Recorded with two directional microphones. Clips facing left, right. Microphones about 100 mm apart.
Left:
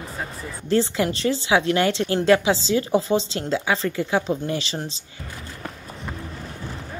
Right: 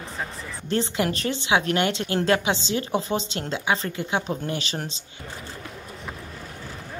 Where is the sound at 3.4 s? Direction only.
25° right (ahead or behind).